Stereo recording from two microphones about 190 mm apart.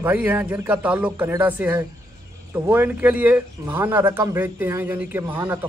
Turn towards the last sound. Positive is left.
turn(degrees=-10)  # may be behind; listen again after turning